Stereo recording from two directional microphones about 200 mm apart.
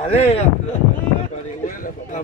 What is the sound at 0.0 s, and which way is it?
Speech, 30° left (ahead or behind).